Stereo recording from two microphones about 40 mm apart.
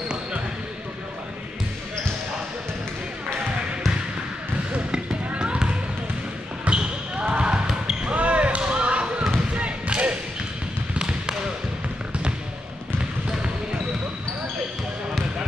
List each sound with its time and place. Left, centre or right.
4.7 s basketball bounce: right
6.6 s basketball bounce: right
11.0 s basketball bounce: centre